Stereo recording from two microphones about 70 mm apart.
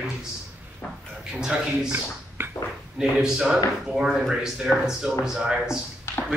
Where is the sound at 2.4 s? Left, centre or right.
Right.